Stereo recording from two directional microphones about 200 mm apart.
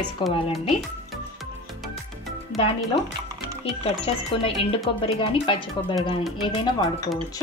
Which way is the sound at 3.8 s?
30° left (ahead or behind).